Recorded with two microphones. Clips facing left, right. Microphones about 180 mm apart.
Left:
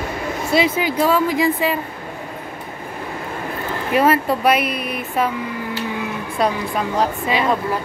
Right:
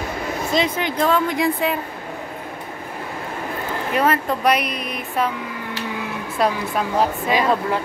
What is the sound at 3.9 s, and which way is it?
Speech, 10° left (ahead or behind).